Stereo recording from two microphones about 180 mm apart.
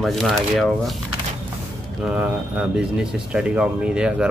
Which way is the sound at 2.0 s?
5° right (ahead or behind).